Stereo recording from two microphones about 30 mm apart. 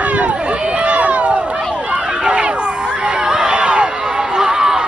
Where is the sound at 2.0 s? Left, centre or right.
Right.